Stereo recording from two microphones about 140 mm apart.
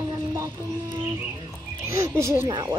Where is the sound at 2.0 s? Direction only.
20° right (ahead or behind).